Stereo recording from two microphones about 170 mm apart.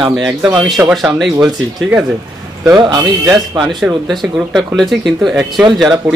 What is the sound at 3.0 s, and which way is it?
Speech, 10° right (ahead or behind).